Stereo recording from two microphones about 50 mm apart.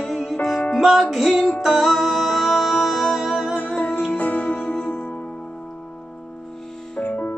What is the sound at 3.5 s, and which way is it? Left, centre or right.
Music, left.